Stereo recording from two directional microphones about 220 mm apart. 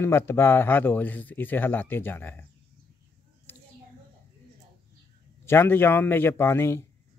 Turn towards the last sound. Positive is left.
turn(degrees=10)  # may be behind; listen again after turning